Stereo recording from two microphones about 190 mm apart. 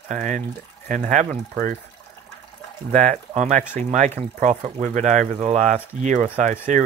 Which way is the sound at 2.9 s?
40° right (ahead or behind).